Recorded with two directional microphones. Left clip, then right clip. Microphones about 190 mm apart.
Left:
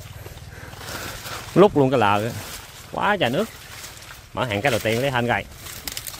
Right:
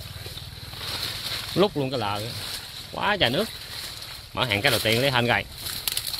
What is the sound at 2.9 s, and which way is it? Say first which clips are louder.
Speech: left 2 dB; 20° left (ahead or behind).